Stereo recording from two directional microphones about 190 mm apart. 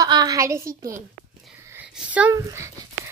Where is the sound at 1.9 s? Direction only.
5° right (ahead or behind).